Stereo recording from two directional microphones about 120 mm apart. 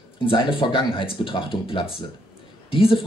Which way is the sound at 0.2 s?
45° left (ahead or behind).